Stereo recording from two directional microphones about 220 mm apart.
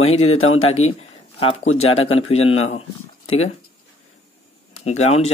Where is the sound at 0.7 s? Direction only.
25° left (ahead or behind).